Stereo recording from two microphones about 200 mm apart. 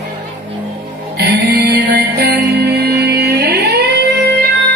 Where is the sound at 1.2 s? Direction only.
50° right (ahead or behind).